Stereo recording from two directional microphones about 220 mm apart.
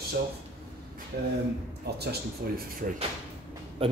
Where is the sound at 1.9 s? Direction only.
45° right (ahead or behind).